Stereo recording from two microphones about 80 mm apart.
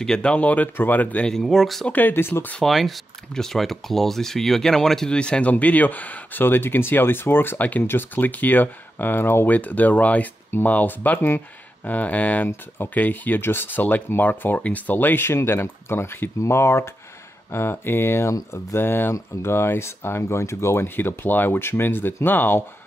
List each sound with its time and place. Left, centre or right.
0.0 s speech: centre
1.3 s speech: centre
1.9 s speech: left
2.6 s speech: centre; by 22.6 s left